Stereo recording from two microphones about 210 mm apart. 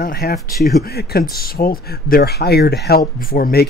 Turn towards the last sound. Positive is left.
turn(degrees=45)  # may be behind; listen again after turning